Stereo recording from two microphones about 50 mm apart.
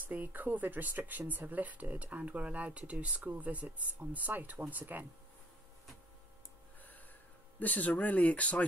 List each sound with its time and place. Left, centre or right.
0.1 s speech: right
7.5 s speech: left